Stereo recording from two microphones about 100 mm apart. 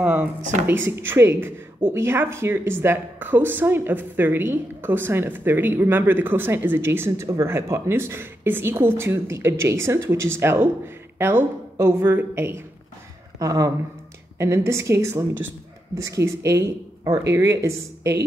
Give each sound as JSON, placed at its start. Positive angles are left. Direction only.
{"t": 0.0, "sound": "speech", "side_deg": -15}
{"t": 13.4, "sound": "speech", "side_deg": -35}